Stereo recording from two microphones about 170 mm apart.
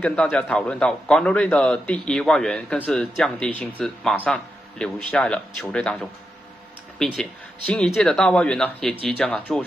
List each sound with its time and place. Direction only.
0.0 s a man's voice: 5° left (ahead or behind)
7.2 s a man's voice: 5° left (ahead or behind)